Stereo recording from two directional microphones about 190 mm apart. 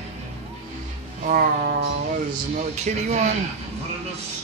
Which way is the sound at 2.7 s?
35° right (ahead or behind).